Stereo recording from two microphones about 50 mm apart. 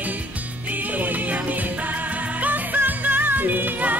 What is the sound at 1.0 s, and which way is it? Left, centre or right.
Music, right.